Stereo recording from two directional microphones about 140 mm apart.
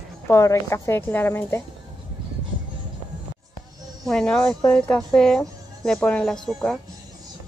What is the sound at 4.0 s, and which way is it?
Speech, 5° left (ahead or behind).